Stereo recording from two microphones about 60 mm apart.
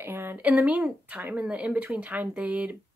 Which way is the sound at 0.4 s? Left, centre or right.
Right.